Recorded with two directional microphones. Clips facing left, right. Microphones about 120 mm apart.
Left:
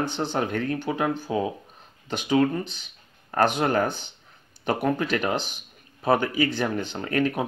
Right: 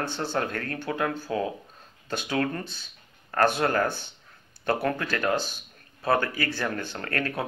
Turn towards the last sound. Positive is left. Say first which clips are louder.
# left 5 dB
turn(degrees=15)  # may be behind; listen again after turning